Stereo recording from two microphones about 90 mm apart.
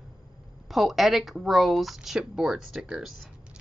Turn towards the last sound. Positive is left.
turn(degrees=-10)  # may be behind; listen again after turning